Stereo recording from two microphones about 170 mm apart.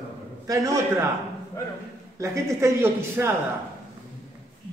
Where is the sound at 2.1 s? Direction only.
15° right (ahead or behind).